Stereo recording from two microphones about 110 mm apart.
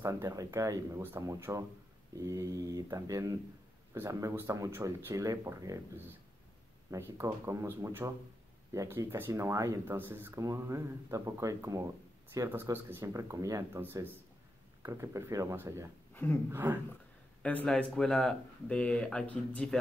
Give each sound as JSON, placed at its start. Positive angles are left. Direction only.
{"t": 0.0, "sound": "speech", "side_deg": -25}
{"t": 6.9, "sound": "speech", "side_deg": -25}
{"t": 17.4, "sound": "speech", "side_deg": 15}